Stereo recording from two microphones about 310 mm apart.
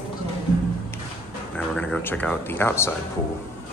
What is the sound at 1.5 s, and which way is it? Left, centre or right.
Speech, centre.